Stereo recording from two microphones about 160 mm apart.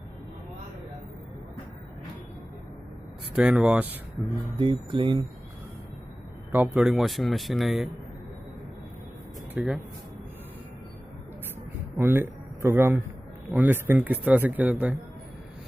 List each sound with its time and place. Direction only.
3.3 s a man's voice: 5° right (ahead or behind)
4.6 s speech: 30° right (ahead or behind)
6.5 s speech: 10° right (ahead or behind)
9.5 s speech: 10° right (ahead or behind)
12.0 s a man's voice: 15° right (ahead or behind)